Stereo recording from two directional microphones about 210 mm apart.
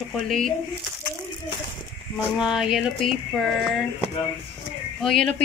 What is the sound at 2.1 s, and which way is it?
Speech, 5° right (ahead or behind).